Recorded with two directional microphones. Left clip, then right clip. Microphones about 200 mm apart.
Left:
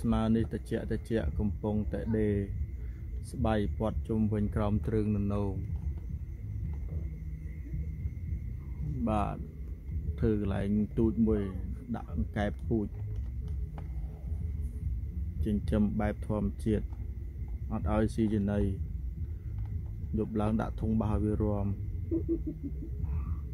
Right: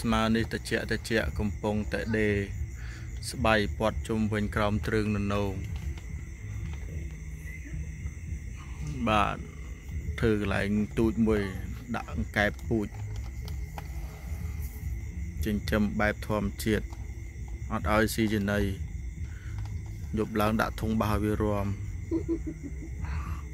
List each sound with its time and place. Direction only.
0.0 s speech: 5° left (ahead or behind)
9.0 s speech: centre (ahead or behind)
15.4 s speech: 5° left (ahead or behind)
20.2 s speech: centre (ahead or behind)